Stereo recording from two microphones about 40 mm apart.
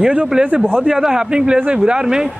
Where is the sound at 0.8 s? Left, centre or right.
Centre.